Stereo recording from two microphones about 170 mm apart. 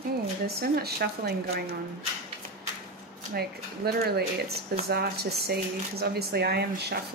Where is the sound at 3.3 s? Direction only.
70° right (ahead or behind).